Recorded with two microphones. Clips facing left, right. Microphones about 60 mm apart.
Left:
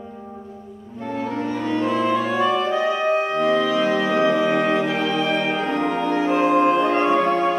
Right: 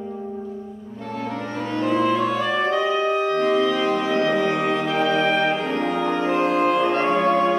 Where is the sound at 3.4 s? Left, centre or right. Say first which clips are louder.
Left 1 dB; centre.